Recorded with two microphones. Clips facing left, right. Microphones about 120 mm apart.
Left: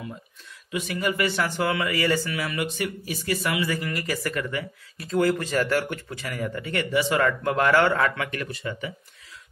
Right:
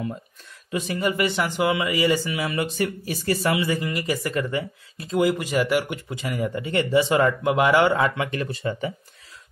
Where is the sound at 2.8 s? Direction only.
40° right (ahead or behind).